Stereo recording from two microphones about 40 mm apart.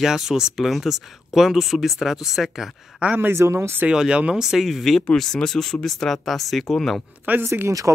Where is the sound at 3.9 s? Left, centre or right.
Right.